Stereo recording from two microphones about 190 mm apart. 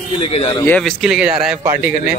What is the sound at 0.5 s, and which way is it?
A man's voice, 10° left (ahead or behind).